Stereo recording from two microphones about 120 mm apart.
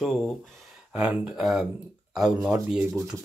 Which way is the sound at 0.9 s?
10° right (ahead or behind).